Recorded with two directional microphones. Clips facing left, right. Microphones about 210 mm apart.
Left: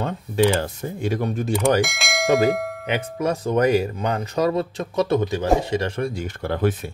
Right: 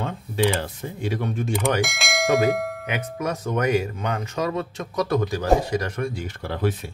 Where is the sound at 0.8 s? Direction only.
45° left (ahead or behind).